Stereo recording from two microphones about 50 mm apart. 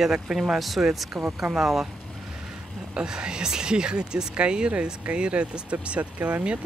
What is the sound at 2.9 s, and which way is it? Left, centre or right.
Speech, centre.